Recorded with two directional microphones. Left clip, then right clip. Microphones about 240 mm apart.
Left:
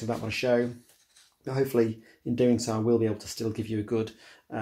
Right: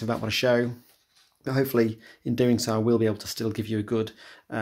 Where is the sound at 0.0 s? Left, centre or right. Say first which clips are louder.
Right 4 dB; right.